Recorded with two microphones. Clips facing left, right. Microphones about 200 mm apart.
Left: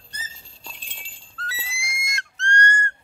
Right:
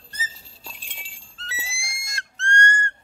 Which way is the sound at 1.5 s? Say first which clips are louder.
Even; 30° right (ahead or behind).